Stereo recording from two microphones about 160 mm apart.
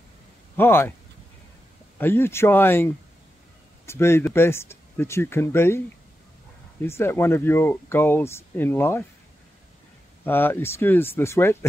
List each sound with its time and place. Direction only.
0.6 s speech: 15° left (ahead or behind)
2.0 s speech: 15° left (ahead or behind)
6.8 s speech: 15° left (ahead or behind)
10.2 s speech: 15° left (ahead or behind)